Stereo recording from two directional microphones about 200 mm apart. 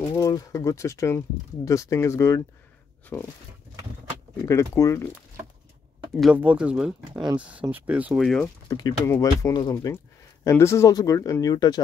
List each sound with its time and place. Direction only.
0.2 s speech: 15° left (ahead or behind)
4.5 s speech: 15° left (ahead or behind)
6.1 s speech: 5° right (ahead or behind)
8.6 s speech: 20° left (ahead or behind)